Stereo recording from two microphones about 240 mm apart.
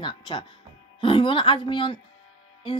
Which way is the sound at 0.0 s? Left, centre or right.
Centre.